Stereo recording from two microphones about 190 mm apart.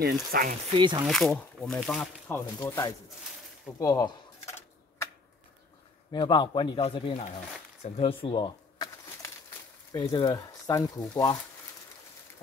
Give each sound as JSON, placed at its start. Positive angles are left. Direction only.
{"t": 0.0, "sound": "speech", "side_deg": -50}
{"t": 0.7, "sound": "speech", "side_deg": -25}
{"t": 1.0, "sound": "speech", "side_deg": 0}
{"t": 2.3, "sound": "speech", "side_deg": 15}
{"t": 3.8, "sound": "typing", "side_deg": 15}
{"t": 6.1, "sound": "speech", "side_deg": 25}
{"t": 7.8, "sound": "a sound", "side_deg": 30}
{"t": 9.9, "sound": "speech", "side_deg": 20}